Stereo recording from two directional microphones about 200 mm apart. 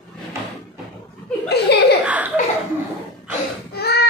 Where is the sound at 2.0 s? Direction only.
5° right (ahead or behind).